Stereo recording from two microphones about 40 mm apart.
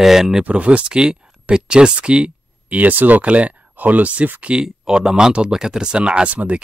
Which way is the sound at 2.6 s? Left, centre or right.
Right.